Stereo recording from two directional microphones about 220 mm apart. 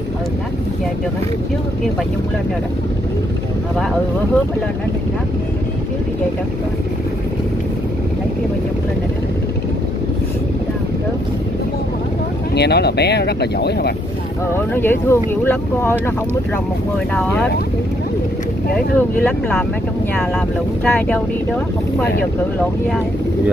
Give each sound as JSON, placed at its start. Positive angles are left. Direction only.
{"t": 12.5, "sound": "speech", "side_deg": 50}
{"t": 14.5, "sound": "speech", "side_deg": 10}
{"t": 17.1, "sound": "speech", "side_deg": 5}
{"t": 18.9, "sound": "speech", "side_deg": 10}